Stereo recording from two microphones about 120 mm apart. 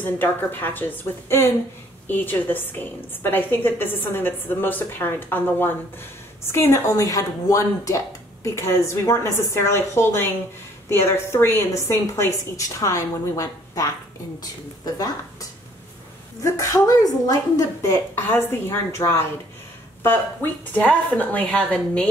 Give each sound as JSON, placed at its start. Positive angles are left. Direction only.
{"t": 0.0, "sound": "a woman's voice", "side_deg": 15}
{"t": 16.4, "sound": "a woman's voice", "side_deg": 30}
{"t": 20.7, "sound": "a woman's voice", "side_deg": 15}